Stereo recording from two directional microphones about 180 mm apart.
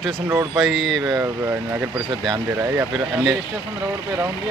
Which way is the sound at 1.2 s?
15° right (ahead or behind).